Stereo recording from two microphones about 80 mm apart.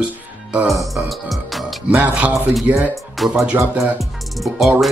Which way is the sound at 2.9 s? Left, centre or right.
Centre.